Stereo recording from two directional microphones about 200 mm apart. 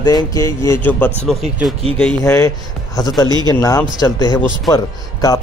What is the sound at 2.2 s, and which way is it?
A man's voice, 15° left (ahead or behind).